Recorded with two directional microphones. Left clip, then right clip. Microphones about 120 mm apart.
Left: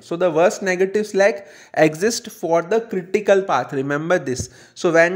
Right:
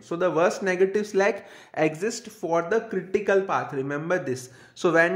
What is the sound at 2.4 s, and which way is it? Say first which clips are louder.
Speech: left 6 dB; 30° left (ahead or behind).